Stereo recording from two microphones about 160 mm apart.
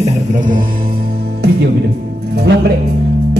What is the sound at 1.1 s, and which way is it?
Music, 75° right (ahead or behind).